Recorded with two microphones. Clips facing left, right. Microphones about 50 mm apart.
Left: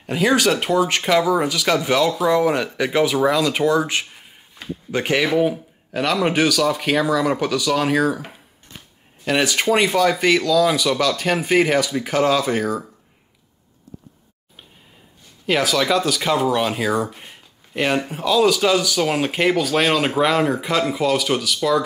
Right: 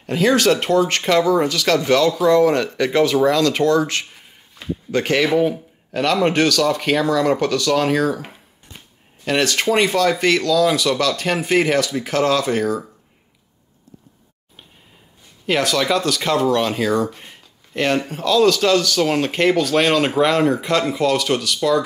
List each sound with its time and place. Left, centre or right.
0.0 s speech: centre
4.6 s a sound: centre
4.9 s a man's voice: centre
9.2 s speech: centre
15.4 s speech: centre